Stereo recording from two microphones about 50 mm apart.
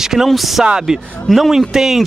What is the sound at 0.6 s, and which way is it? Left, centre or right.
Speech, centre.